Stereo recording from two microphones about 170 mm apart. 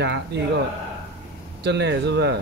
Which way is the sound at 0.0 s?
85° right.